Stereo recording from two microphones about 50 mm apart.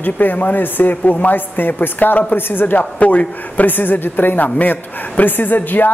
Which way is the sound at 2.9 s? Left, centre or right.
Left.